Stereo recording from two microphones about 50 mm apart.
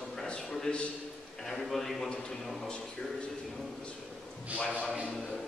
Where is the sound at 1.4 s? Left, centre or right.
Centre.